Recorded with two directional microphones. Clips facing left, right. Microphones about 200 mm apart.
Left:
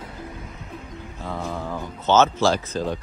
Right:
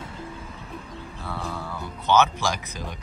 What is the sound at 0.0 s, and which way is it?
Music, 30° right (ahead or behind).